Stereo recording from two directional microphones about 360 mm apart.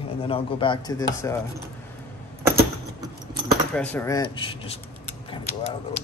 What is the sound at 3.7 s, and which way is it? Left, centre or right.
Speech, centre.